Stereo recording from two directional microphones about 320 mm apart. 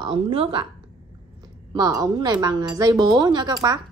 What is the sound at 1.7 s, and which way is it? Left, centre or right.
Speech, centre.